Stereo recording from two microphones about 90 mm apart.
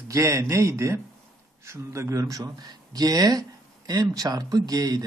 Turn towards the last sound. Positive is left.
turn(degrees=-45)  # may be behind; listen again after turning